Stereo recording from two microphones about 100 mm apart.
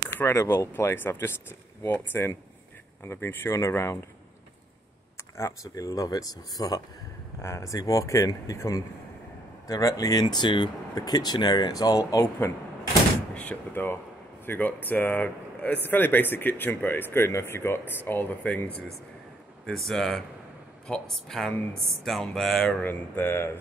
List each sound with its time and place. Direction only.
0.2 s speech: 25° left (ahead or behind)
5.4 s speech: 35° left (ahead or behind)
7.4 s speech: 30° left (ahead or behind)
10.2 s speech: 50° left (ahead or behind)
13.3 s speech: 15° left (ahead or behind)
19.6 s speech: 5° left (ahead or behind)
22.8 s speech: 20° left (ahead or behind)